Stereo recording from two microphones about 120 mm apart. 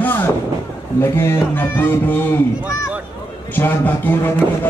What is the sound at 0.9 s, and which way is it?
Speech, 20° left (ahead or behind).